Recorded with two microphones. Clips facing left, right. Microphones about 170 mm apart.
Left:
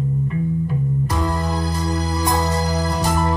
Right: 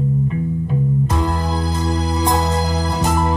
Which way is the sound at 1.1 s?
25° right (ahead or behind).